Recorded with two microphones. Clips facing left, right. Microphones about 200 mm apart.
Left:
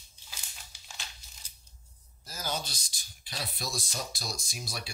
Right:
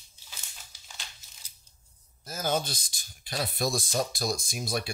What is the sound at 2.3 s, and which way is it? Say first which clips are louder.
Speech: right 7 dB; 50° right (ahead or behind).